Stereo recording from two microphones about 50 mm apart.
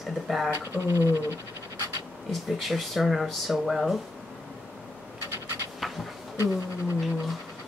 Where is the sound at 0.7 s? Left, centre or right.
Right.